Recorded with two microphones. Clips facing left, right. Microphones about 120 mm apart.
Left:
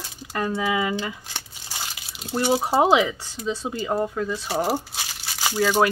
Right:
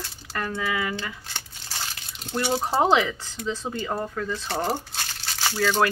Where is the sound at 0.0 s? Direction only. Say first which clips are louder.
Left 4 dB; 15° left (ahead or behind).